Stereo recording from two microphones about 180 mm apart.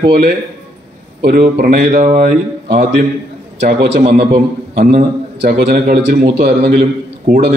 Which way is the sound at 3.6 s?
70° right (ahead or behind).